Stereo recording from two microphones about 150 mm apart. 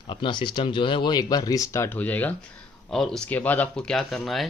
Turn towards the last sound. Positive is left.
turn(degrees=0)  # may be behind; listen again after turning